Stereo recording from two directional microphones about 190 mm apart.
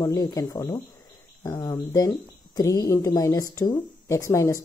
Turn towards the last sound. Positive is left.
turn(degrees=15)  # may be behind; listen again after turning